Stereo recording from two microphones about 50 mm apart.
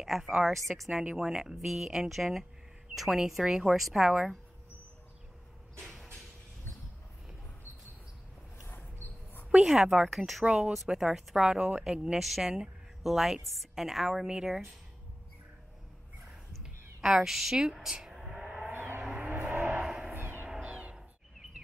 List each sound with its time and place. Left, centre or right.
0.0 s a woman's voice: centre
8.6 s a sound: left
9.6 s a woman's voice: centre
10.4 s speech: right
11.0 s speech: centre
12.2 s a woman's voice: centre
17.0 s speech: centre
17.9 s a sound: centre
18.7 s vehicle: right
19.5 s vehicle: right
19.8 s music: centre
20.2 s a sound: right
20.6 s music: right